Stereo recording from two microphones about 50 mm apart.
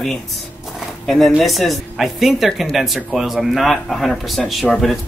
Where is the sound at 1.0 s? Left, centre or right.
Centre.